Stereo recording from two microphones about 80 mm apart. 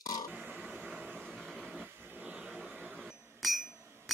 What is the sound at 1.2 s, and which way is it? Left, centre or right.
Vehicle, centre.